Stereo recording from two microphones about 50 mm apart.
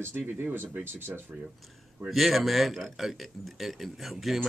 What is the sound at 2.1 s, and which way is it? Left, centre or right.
Speech, centre.